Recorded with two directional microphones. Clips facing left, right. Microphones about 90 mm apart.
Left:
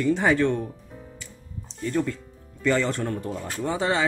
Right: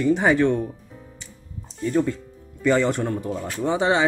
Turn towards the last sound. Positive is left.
turn(degrees=-20)  # may be behind; listen again after turning